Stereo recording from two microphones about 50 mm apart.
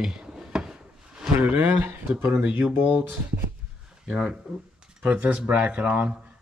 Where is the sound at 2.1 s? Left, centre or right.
Right.